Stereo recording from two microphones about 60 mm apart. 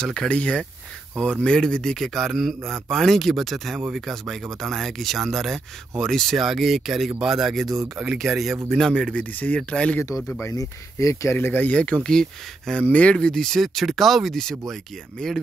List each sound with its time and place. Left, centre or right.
0.0 s speech: centre
8.6 s speech: centre
9.2 s speech: left
10.5 s speech: left
11.3 s speech: left
12.0 s speech: centre